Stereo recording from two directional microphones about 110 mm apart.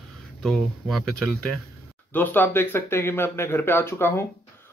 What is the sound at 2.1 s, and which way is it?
Speech, 15° left (ahead or behind).